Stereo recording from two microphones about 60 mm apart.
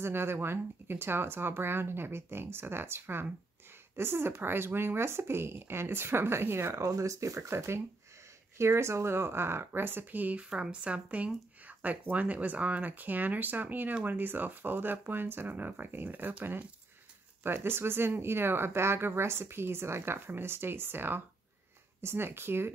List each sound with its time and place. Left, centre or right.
0.0 s speech: right
6.7 s speech: right
7.5 s speech: right
10.5 s speech: centre; by 16.3 s right
17.4 s speech: right